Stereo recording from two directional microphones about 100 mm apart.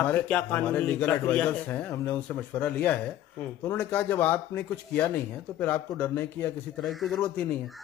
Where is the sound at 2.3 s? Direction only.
10° left (ahead or behind).